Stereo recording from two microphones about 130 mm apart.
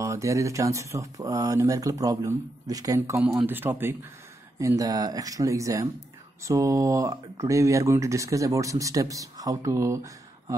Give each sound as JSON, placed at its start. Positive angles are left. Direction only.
{"t": 0.0, "sound": "speech", "side_deg": -25}
{"t": 3.0, "sound": "speech", "side_deg": -15}
{"t": 4.6, "sound": "speech", "side_deg": -25}